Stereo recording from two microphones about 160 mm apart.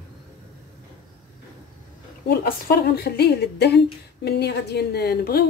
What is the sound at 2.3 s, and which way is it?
A woman's voice, 70° left (ahead or behind).